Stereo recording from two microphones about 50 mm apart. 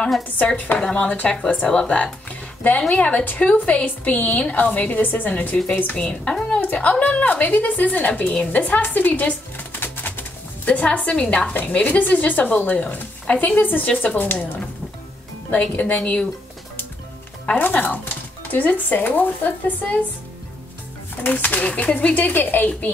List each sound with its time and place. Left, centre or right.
0.9 s a woman's voice: left
2.2 s music: left
2.9 s a woman's voice: left
6.0 s a woman's voice: left
8.8 s music: left
11.1 s a woman's voice: left
15.5 s speech: left
17.6 s a woman's voice: left
21.3 s a woman's voice: left